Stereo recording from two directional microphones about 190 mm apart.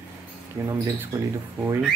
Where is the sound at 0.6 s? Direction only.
20° right (ahead or behind).